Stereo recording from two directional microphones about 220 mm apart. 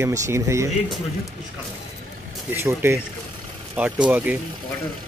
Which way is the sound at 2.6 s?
10° right (ahead or behind).